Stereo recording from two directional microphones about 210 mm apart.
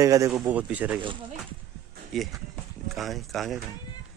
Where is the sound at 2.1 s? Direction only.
Centre (ahead or behind).